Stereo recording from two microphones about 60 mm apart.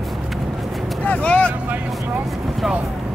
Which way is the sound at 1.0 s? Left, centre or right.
Left.